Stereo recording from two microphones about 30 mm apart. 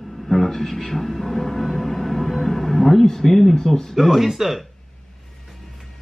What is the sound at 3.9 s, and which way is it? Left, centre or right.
Speech, centre.